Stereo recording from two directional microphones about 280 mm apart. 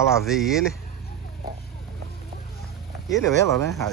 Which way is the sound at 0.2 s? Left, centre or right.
Centre.